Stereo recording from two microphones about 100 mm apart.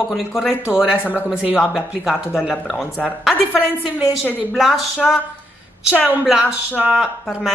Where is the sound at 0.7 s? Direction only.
15° right (ahead or behind).